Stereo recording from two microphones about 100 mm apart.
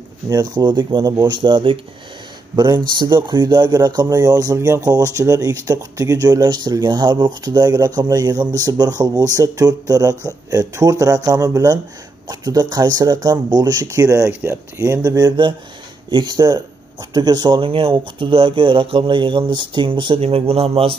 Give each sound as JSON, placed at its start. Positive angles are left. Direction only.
{"t": 0.3, "sound": "speech", "side_deg": -40}
{"t": 2.5, "sound": "speech", "side_deg": -45}
{"t": 16.1, "sound": "speech", "side_deg": -50}